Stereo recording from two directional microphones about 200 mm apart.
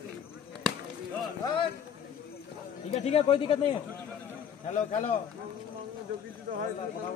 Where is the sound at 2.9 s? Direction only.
30° left (ahead or behind).